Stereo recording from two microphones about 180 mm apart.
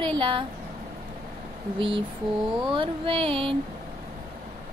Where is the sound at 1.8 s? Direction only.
30° right (ahead or behind).